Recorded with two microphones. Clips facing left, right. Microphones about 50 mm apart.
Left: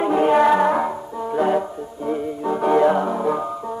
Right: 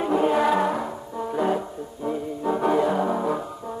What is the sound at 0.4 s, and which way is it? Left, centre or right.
Music, centre.